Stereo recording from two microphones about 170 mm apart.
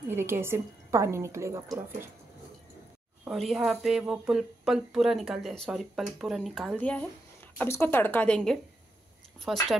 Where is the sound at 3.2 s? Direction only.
Centre (ahead or behind).